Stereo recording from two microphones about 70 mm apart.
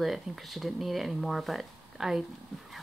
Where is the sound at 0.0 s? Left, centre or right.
Centre.